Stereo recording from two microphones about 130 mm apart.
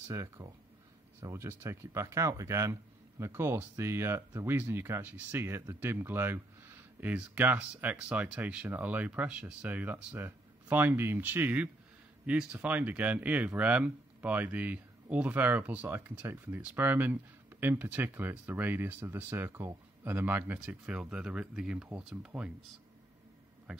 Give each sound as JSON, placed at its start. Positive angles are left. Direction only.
{"t": 0.1, "sound": "speech", "side_deg": -25}